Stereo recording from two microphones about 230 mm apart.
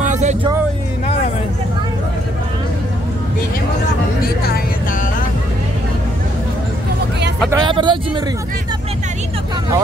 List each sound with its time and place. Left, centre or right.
0.1 s music: right
7.5 s speech: centre